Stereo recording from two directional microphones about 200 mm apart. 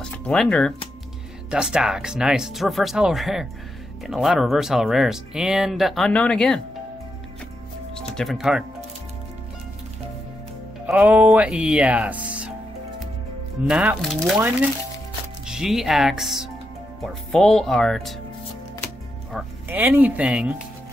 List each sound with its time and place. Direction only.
0.0 s speech: 5° left (ahead or behind)
8.2 s speech: centre (ahead or behind)
10.9 s speech: 5° right (ahead or behind)
13.7 s speech: 5° right (ahead or behind)
15.4 s speech: 5° right (ahead or behind)
19.3 s speech: 10° right (ahead or behind)